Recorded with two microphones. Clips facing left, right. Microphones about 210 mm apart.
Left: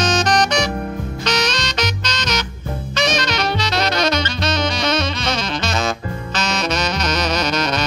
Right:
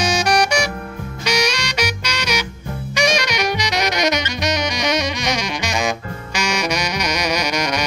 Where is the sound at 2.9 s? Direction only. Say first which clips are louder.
Right 1 dB; 15° right (ahead or behind).